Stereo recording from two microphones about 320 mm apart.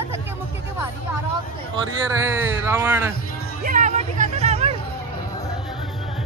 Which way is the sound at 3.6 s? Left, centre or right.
Right.